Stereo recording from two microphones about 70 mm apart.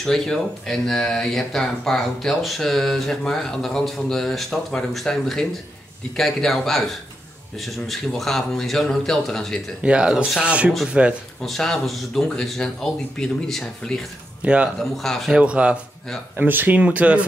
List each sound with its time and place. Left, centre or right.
0.0 s speech: centre
9.8 s speech: centre
11.4 s speech: centre
14.4 s speech: centre
14.8 s speech: centre
15.3 s speech: centre
16.3 s speech: right